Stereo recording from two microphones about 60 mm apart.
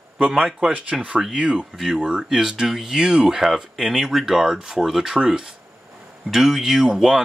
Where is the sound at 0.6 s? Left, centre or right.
Centre.